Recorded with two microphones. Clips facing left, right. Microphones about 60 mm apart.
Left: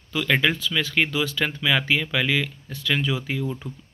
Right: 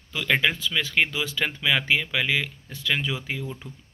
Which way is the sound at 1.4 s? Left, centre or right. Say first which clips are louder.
Right 1 dB; centre.